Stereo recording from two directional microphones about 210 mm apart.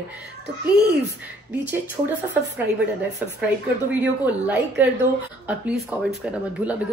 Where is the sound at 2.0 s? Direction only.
15° right (ahead or behind).